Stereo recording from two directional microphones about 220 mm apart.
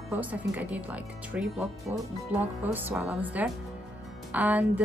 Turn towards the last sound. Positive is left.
turn(degrees=-5)  # may be behind; listen again after turning